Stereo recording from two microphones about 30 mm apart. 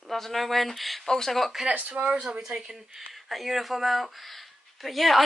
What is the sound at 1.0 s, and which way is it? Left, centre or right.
Speech, centre.